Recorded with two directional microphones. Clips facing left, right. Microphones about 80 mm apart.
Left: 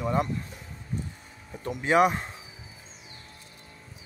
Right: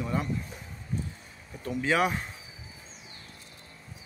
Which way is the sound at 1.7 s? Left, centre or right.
Left.